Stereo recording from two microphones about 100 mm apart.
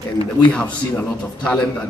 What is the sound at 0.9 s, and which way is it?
Speech, 15° left (ahead or behind).